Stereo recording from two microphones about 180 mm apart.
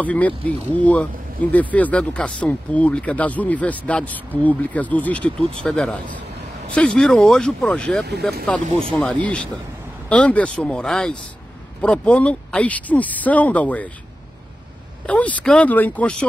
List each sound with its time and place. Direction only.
0.0 s speech: 10° left (ahead or behind)
8.6 s speech: 30° right (ahead or behind)
8.9 s speech: 5° left (ahead or behind)
15.0 s speech: 10° left (ahead or behind)